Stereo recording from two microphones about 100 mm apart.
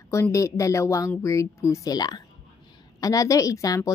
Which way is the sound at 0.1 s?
30° left (ahead or behind).